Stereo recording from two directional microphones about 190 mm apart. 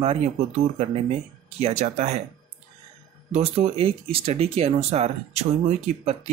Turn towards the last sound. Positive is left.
turn(degrees=-35)  # may be behind; listen again after turning